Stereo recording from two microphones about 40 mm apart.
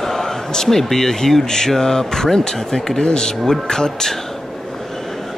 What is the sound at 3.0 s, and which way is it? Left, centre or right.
Speech, centre.